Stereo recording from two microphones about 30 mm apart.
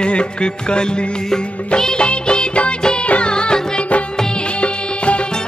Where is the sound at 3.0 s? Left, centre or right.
Left.